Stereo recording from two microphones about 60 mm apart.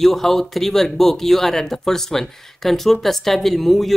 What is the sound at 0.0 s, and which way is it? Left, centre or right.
Speech, centre.